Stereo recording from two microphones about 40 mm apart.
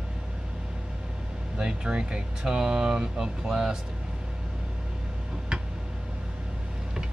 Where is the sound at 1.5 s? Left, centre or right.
Right.